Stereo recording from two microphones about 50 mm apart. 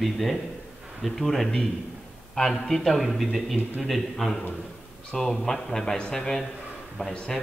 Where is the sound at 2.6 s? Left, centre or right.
Centre.